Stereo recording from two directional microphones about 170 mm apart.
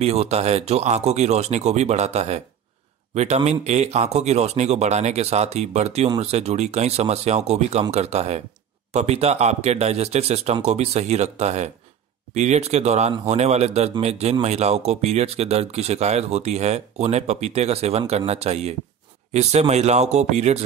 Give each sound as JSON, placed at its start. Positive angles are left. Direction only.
{"t": 0.0, "sound": "speech", "side_deg": -40}